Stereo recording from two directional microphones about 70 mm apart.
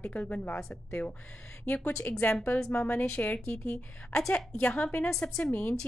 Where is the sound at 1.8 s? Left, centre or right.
Left.